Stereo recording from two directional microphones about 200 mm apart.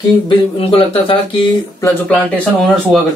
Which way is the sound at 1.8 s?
10° left (ahead or behind).